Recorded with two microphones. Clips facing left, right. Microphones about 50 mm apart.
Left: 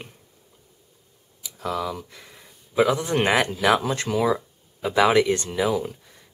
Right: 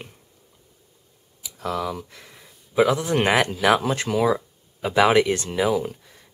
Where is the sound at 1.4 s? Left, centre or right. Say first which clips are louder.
Right 1 dB; centre.